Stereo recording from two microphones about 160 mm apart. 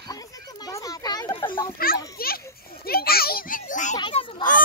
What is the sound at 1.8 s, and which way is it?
Children playing, 65° left (ahead or behind).